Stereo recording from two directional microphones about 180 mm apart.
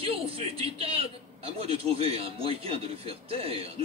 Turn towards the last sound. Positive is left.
turn(degrees=-30)  # may be behind; listen again after turning